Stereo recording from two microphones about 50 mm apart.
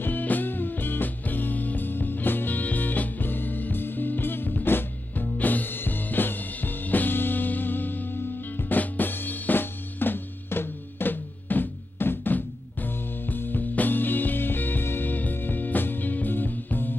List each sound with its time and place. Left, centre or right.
0.0 s music: left